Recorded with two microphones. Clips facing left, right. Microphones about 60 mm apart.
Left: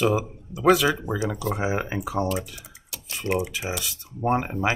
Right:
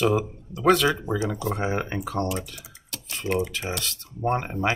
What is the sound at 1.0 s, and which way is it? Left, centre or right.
Speech, left.